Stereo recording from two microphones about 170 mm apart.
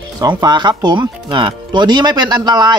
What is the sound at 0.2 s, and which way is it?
Speech, 25° right (ahead or behind).